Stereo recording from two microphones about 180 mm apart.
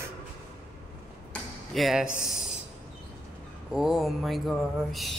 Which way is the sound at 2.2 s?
5° right (ahead or behind).